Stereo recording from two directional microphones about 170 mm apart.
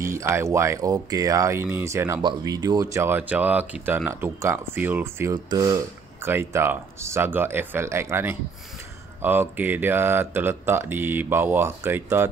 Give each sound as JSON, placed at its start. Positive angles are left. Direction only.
{"t": 0.0, "sound": "speech", "side_deg": -15}